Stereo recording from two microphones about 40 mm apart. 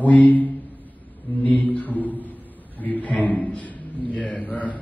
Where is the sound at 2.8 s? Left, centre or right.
Left.